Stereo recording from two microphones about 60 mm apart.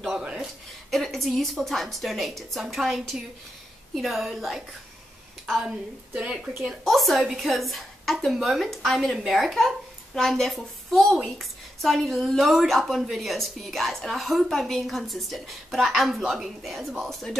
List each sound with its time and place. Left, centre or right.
0.1 s a sound: centre
0.8 s a woman's voice: centre
6.1 s speech: centre
6.8 s a woman's voice: centre